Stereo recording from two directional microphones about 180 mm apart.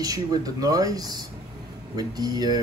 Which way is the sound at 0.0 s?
20° right (ahead or behind).